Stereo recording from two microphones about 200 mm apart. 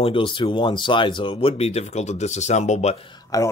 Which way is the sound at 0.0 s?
25° left (ahead or behind).